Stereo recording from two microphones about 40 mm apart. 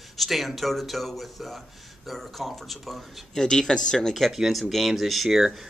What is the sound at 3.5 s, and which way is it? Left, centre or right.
Speech, centre.